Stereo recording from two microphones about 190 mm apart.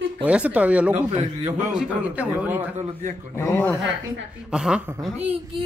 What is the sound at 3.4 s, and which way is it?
Speech, 10° left (ahead or behind).